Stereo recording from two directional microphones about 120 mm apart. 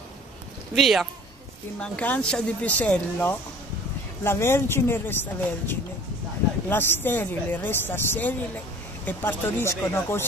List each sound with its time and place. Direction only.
0.7 s speech: centre (ahead or behind)
1.8 s speech: 10° left (ahead or behind)